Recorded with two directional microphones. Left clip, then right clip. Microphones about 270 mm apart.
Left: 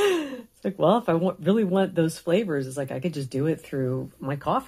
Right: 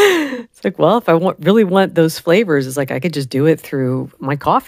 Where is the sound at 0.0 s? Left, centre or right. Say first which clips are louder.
Right 11 dB; right.